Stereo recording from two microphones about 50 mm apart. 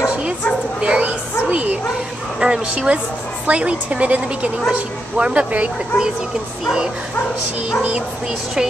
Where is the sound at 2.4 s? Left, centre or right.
Centre.